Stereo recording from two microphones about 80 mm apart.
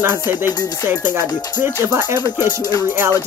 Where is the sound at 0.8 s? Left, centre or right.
Right.